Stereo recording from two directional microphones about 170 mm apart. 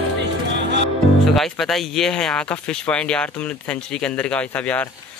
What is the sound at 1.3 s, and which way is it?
Speech, centre (ahead or behind).